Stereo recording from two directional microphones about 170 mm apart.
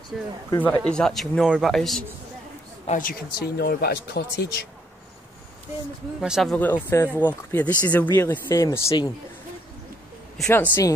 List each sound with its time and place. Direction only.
0.1 s speech: centre (ahead or behind)
0.5 s speech: 10° left (ahead or behind)
2.9 s speech: 55° left (ahead or behind)
6.2 s speech: 5° right (ahead or behind)
6.5 s speech: 10° left (ahead or behind)
10.5 s speech: 10° left (ahead or behind)